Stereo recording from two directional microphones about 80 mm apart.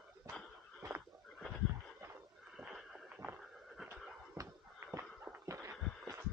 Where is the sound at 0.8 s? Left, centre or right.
Right.